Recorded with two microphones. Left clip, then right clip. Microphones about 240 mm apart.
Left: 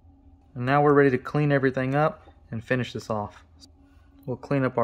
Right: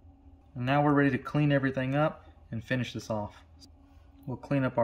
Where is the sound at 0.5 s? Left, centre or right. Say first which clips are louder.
Left 7 dB; centre.